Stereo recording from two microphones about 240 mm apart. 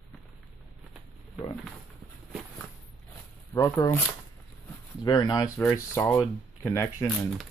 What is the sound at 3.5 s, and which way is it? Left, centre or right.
Speech, centre.